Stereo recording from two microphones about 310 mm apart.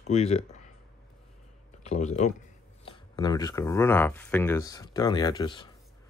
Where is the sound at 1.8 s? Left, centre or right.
Left.